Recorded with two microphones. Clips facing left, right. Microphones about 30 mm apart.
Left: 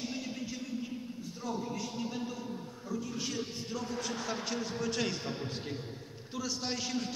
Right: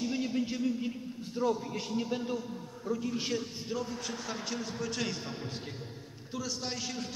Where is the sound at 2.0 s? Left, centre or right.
Right.